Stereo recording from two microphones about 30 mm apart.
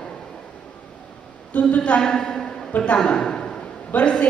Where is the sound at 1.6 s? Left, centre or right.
Left.